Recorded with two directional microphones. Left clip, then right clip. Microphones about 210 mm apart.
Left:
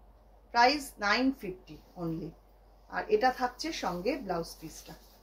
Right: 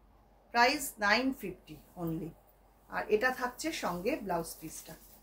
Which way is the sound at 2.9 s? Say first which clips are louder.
Left 3 dB; 15° right (ahead or behind).